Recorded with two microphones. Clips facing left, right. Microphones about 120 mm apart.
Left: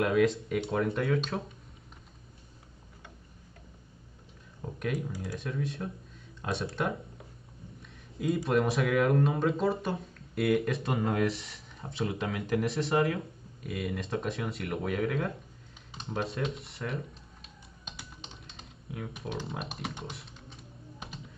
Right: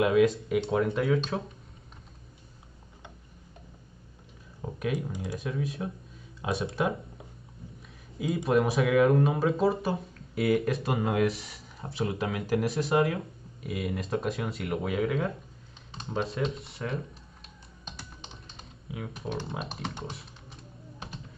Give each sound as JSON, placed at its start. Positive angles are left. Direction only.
{"t": 0.0, "sound": "speech", "side_deg": 0}
{"t": 4.7, "sound": "speech", "side_deg": -5}
{"t": 5.0, "sound": "speech", "side_deg": -20}
{"t": 5.4, "sound": "speech", "side_deg": 0}
{"t": 8.5, "sound": "speech", "side_deg": 0}
{"t": 18.6, "sound": "typing", "side_deg": -5}
{"t": 19.2, "sound": "speech", "side_deg": 5}
{"t": 20.1, "sound": "typing", "side_deg": 0}